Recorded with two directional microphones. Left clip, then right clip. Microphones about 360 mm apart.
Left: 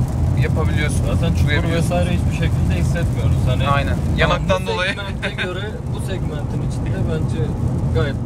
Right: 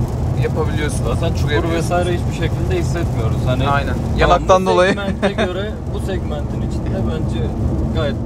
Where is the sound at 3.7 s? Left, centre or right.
Centre.